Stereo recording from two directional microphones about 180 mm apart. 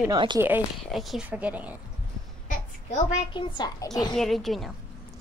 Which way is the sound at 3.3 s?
25° left (ahead or behind).